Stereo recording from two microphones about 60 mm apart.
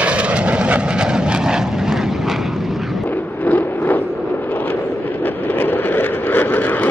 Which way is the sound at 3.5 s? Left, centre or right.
Left.